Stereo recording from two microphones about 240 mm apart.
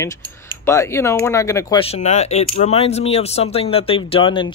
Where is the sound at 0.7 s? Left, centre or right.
Centre.